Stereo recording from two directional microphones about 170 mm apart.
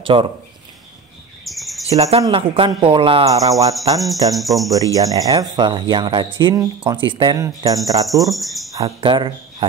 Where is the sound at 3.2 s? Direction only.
20° right (ahead or behind).